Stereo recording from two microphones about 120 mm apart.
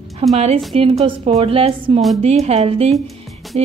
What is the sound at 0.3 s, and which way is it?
A woman's voice, 65° right (ahead or behind).